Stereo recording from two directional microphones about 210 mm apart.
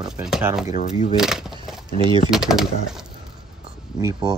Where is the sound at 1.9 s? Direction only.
25° right (ahead or behind).